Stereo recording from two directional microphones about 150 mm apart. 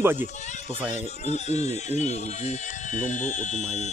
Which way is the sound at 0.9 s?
50° left (ahead or behind).